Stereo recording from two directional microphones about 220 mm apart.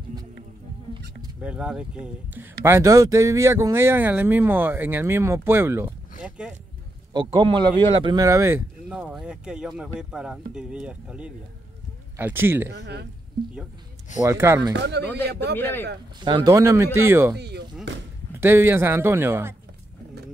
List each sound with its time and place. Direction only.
1.4 s speech: 5° right (ahead or behind)
7.2 s speech: 20° right (ahead or behind)
12.6 s speech: 55° right (ahead or behind)
14.2 s speech: 10° right (ahead or behind)
14.7 s a man's voice: 50° right (ahead or behind)
15.5 s speech: 10° left (ahead or behind)
16.3 s speech: 15° right (ahead or behind)
17.4 s a man's voice: 50° right (ahead or behind)
18.4 s speech: 10° right (ahead or behind)